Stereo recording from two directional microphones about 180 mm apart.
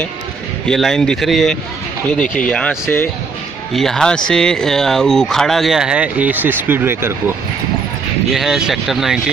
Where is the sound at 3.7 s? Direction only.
Centre (ahead or behind).